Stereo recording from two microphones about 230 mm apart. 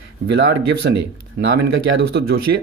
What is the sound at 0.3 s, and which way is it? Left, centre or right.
Speech, right.